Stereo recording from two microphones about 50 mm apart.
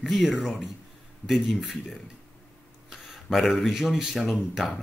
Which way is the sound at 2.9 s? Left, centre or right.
Centre.